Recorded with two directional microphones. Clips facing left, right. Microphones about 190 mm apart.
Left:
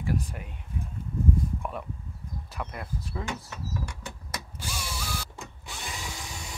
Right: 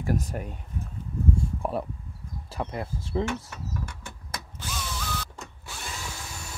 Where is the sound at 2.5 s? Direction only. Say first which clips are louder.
Right 5 dB; 30° right (ahead or behind).